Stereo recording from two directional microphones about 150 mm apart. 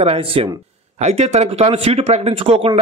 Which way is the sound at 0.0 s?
40° right (ahead or behind).